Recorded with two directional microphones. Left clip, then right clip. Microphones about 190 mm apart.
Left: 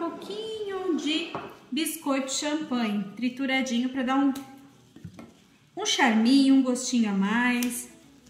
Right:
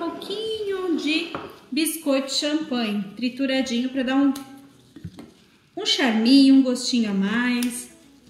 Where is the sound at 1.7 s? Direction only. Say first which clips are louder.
Right 5 dB; 50° left (ahead or behind).